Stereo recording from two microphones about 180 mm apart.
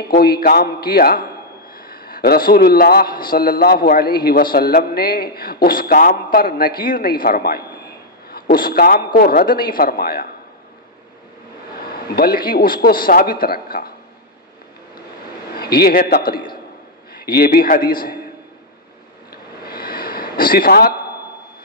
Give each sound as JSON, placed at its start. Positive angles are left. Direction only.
{"t": 0.1, "sound": "a man's voice", "side_deg": 55}
{"t": 12.2, "sound": "a man's voice", "side_deg": 55}
{"t": 15.5, "sound": "a man's voice", "side_deg": 60}
{"t": 19.3, "sound": "a sound", "side_deg": 60}